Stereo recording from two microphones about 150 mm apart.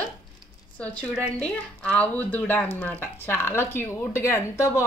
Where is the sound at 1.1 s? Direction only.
10° left (ahead or behind).